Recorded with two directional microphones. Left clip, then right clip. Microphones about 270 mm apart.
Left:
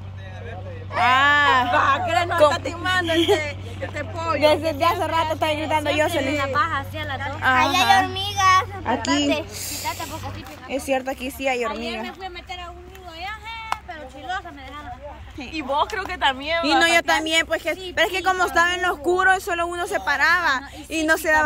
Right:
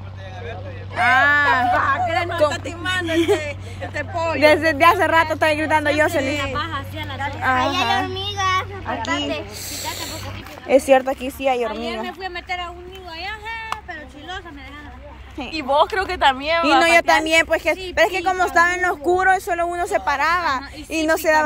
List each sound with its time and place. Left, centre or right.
0.9 s sheep: centre
1.7 s hubbub: left
2.4 s speech: centre
6.5 s a woman's voice: centre
7.6 s children playing: left
10.7 s speech: centre
13.2 s a sound: centre
15.5 s speech: right
16.8 s speech: centre